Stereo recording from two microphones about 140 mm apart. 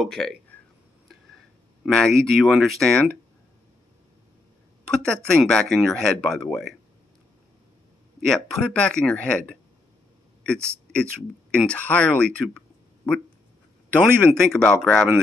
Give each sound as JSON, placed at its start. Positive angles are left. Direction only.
{"t": 0.0, "sound": "speech", "side_deg": 5}
{"t": 1.9, "sound": "speech", "side_deg": 5}
{"t": 4.8, "sound": "speech", "side_deg": 5}
{"t": 8.3, "sound": "a man's voice", "side_deg": 5}
{"t": 14.3, "sound": "speech", "side_deg": 5}